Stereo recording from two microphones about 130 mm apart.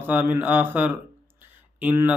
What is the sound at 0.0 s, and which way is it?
Mantra, 15° right (ahead or behind).